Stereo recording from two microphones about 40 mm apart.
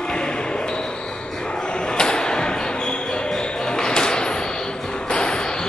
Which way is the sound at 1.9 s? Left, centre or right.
Centre.